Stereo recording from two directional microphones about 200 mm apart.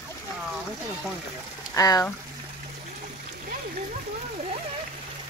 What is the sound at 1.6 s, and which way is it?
Speech, 20° left (ahead or behind).